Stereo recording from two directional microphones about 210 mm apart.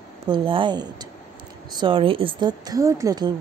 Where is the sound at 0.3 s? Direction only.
20° right (ahead or behind).